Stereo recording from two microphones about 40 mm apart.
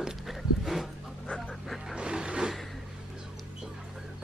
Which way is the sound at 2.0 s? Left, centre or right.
Right.